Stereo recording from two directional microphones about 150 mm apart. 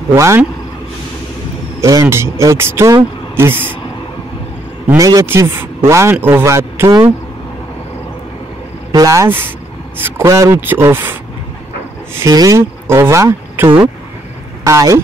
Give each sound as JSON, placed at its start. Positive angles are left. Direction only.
{"t": 0.1, "sound": "speech", "side_deg": -20}
{"t": 1.8, "sound": "speech", "side_deg": -20}
{"t": 4.8, "sound": "speech", "side_deg": -20}
{"t": 8.9, "sound": "speech", "side_deg": -20}
{"t": 12.2, "sound": "speech", "side_deg": -25}